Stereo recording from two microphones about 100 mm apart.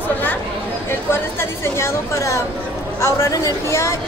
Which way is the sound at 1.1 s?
25° left (ahead or behind).